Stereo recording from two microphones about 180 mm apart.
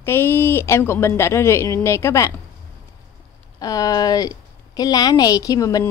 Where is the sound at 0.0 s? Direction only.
15° left (ahead or behind).